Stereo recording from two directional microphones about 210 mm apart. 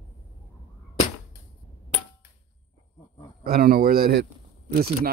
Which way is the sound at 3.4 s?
45° right (ahead or behind).